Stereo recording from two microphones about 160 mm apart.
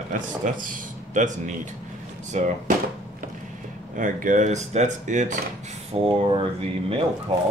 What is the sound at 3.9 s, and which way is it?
Speech, 55° right (ahead or behind).